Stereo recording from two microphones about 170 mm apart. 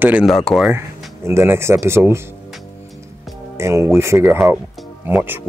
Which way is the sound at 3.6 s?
15° right (ahead or behind).